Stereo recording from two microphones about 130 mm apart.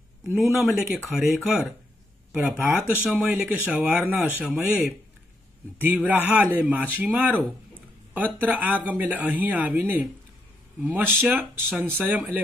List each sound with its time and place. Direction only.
0.3 s speech: centre (ahead or behind)
2.3 s speech: 15° right (ahead or behind)